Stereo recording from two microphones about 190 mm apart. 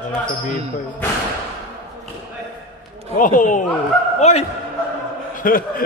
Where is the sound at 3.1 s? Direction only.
45° left (ahead or behind).